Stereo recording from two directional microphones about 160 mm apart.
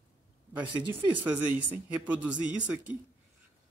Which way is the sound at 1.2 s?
10° right (ahead or behind).